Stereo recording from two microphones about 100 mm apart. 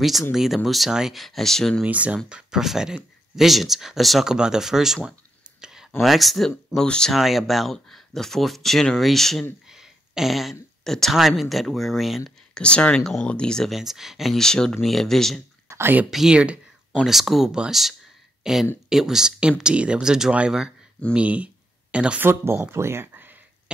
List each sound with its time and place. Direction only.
0.0 s speech: centre (ahead or behind)
1.9 s speech: 15° right (ahead or behind)
5.6 s a sound: 5° right (ahead or behind)
6.0 s speech: centre (ahead or behind)
12.6 s speech: 10° left (ahead or behind)
15.7 s speech: 20° right (ahead or behind)
16.1 s speech: 5° right (ahead or behind)
22.3 s speech: 25° right (ahead or behind)